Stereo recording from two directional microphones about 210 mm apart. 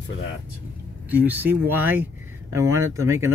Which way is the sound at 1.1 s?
10° right (ahead or behind).